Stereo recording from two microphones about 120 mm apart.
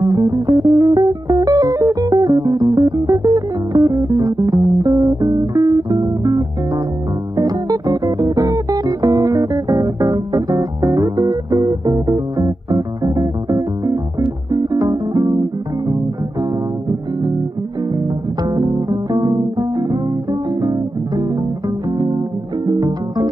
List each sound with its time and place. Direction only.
0.0 s music: 30° right (ahead or behind)
18.4 s guitar: 35° right (ahead or behind)
22.7 s music: 35° right (ahead or behind)